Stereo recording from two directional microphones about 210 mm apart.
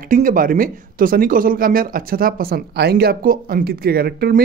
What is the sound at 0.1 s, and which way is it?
Speech, 40° right (ahead or behind).